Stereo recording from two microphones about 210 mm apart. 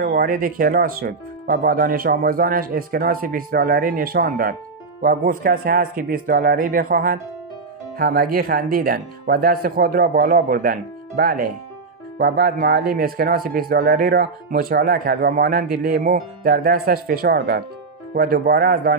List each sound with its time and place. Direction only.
0.0 s speech: 45° right (ahead or behind)